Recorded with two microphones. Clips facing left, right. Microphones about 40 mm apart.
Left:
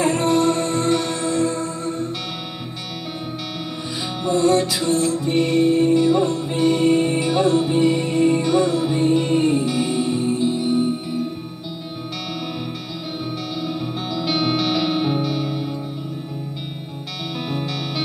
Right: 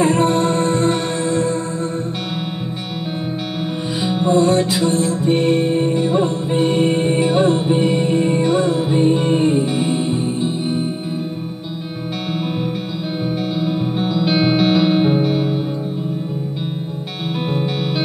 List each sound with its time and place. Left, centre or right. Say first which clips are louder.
0.0 s music: right 2 dB; right
4.1 s music: right 2 dB; right
14.1 s music: right 4 dB; right